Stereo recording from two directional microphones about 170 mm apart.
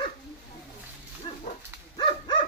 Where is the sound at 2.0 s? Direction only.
30° left (ahead or behind).